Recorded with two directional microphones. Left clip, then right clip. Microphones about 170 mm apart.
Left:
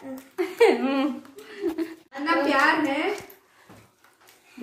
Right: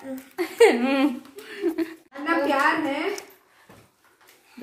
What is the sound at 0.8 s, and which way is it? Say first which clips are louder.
Speech: right 3 dB; 35° right (ahead or behind).